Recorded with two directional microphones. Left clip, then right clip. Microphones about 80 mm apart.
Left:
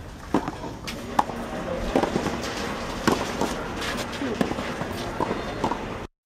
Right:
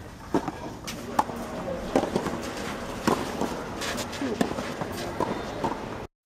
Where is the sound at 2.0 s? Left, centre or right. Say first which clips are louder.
Left 2 dB; right.